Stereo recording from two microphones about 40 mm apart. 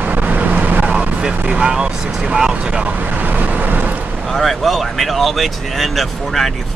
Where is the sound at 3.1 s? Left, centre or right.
Right.